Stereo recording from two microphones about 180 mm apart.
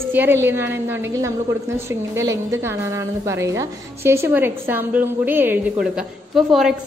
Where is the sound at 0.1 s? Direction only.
10° right (ahead or behind).